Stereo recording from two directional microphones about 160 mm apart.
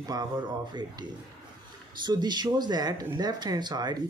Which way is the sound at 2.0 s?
25° right (ahead or behind).